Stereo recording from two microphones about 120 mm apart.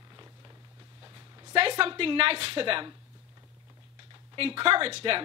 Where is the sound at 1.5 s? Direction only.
50° right (ahead or behind).